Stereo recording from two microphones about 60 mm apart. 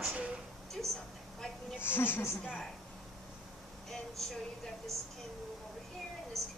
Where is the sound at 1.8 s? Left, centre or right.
Left.